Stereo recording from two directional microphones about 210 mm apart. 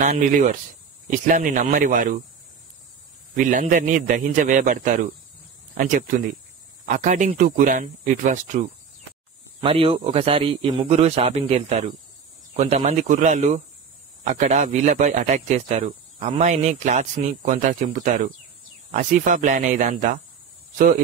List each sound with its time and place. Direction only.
0.0 s a man's voice: 35° right (ahead or behind)
3.3 s a man's voice: 40° right (ahead or behind)
9.6 s a man's voice: 25° right (ahead or behind)